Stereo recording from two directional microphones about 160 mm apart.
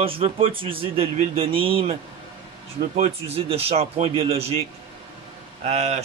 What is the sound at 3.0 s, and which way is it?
Speech, 40° right (ahead or behind).